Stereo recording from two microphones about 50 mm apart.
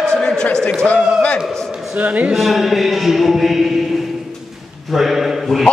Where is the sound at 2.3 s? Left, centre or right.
Centre.